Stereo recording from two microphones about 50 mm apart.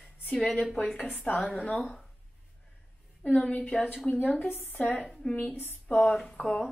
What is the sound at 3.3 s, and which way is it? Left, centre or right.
Speech, left.